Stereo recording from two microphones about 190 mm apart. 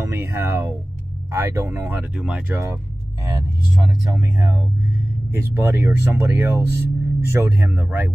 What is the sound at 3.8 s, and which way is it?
Speech, 15° right (ahead or behind).